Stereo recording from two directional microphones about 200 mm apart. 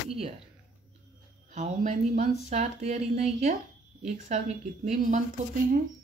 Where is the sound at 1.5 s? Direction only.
35° right (ahead or behind).